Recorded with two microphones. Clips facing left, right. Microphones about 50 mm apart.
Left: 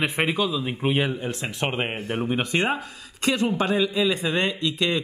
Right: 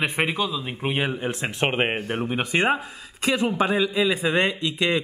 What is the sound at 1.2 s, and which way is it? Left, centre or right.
Speech, right.